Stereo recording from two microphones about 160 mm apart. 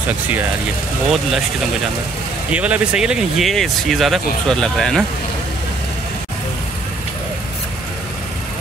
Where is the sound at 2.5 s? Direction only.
10° right (ahead or behind).